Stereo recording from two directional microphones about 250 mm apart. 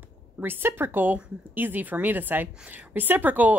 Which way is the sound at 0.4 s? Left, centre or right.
Centre.